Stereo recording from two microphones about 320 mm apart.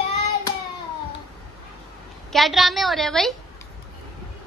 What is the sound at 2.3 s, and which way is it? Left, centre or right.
A woman's voice, centre.